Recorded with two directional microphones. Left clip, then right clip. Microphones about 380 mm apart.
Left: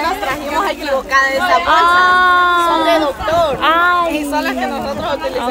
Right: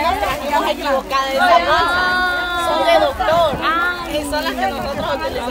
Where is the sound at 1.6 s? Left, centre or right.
Centre.